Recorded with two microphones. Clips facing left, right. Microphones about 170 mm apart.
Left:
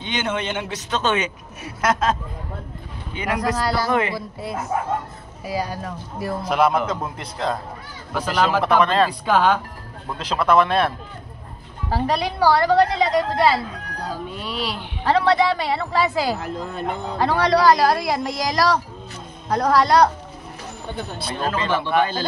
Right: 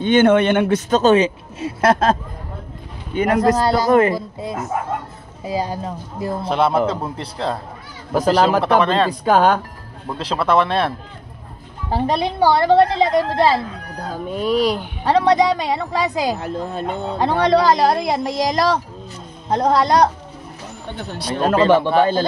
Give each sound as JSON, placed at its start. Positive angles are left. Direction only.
{"t": 0.0, "sound": "a man's voice", "side_deg": -55}
{"t": 3.2, "sound": "a man's voice", "side_deg": -50}
{"t": 3.5, "sound": "a woman's voice", "side_deg": -20}
{"t": 3.9, "sound": "a man's voice", "side_deg": -45}
{"t": 4.4, "sound": "a woman's voice", "side_deg": -20}
{"t": 9.2, "sound": "a man's voice", "side_deg": -45}
{"t": 10.1, "sound": "speech", "side_deg": -30}
{"t": 11.9, "sound": "a woman's voice", "side_deg": -25}
{"t": 14.1, "sound": "a man's voice", "side_deg": -45}
{"t": 15.0, "sound": "a woman's voice", "side_deg": -20}
{"t": 21.5, "sound": "speech", "side_deg": -35}